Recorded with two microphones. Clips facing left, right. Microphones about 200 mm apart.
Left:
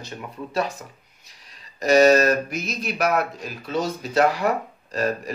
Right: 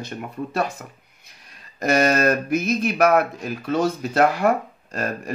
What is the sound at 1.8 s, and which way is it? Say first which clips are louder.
Speech: left 3 dB; 55° right (ahead or behind).